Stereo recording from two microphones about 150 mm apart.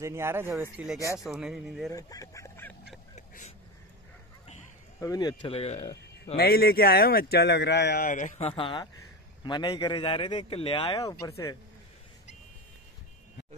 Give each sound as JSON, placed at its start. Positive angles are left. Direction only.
{"t": 0.0, "sound": "speech", "side_deg": -15}
{"t": 1.9, "sound": "speech", "side_deg": 25}
{"t": 3.2, "sound": "a sound", "side_deg": 50}
{"t": 5.0, "sound": "speech", "side_deg": 25}
{"t": 5.5, "sound": "speech", "side_deg": 40}
{"t": 6.3, "sound": "speech", "side_deg": 90}
{"t": 7.9, "sound": "a man's voice", "side_deg": 65}
{"t": 8.5, "sound": "speech", "side_deg": 35}
{"t": 11.0, "sound": "speech", "side_deg": 20}